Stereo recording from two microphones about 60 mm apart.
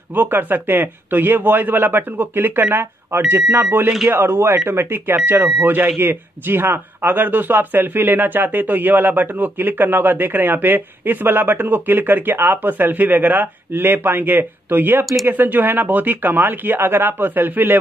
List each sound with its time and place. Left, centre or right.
0.1 s a man's voice: right